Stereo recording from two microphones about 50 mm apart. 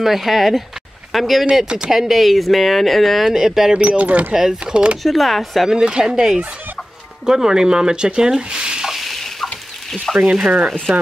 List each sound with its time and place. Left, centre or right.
0.0 s speech: centre
1.4 s speech: centre
1.9 s speech: centre
3.7 s speech: right
4.3 s speech: centre
5.0 s speech: centre
5.7 s speech: centre
8.9 s a sound: centre
10.1 s speech: centre
10.9 s speech: centre